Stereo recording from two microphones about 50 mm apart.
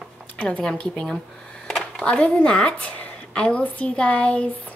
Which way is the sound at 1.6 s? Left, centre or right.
Centre.